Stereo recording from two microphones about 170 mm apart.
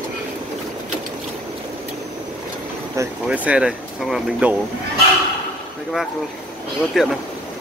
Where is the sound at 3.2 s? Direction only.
10° right (ahead or behind).